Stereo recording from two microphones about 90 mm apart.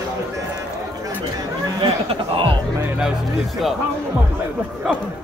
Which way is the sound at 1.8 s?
80° right.